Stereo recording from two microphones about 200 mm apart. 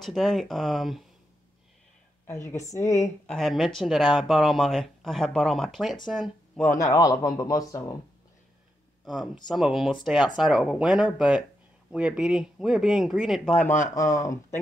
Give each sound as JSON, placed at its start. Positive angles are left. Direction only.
{"t": 0.0, "sound": "speech", "side_deg": 0}
{"t": 2.6, "sound": "a man's voice", "side_deg": 15}
{"t": 3.3, "sound": "speech", "side_deg": 0}
{"t": 6.8, "sound": "a man's voice", "side_deg": 15}
{"t": 9.0, "sound": "speech", "side_deg": 0}
{"t": 13.9, "sound": "a man's voice", "side_deg": 15}